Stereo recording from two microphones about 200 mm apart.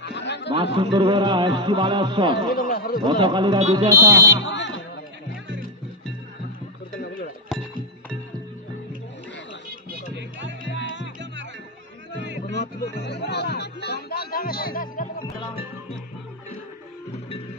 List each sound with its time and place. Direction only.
0.0 s a sound: 60° left (ahead or behind)
0.7 s speech: 25° right (ahead or behind)
2.5 s speech: 45° left (ahead or behind)
3.1 s speech: 25° right (ahead or behind)
4.4 s fire alarm: 65° left (ahead or behind)
9.8 s music: 55° right (ahead or behind)
12.3 s music: 65° right (ahead or behind)
13.0 s music: 60° left (ahead or behind)